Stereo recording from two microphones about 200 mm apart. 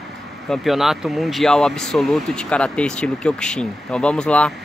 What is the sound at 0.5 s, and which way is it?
Speech, centre (ahead or behind).